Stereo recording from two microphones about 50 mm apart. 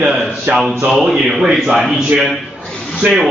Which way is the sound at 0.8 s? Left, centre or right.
Centre.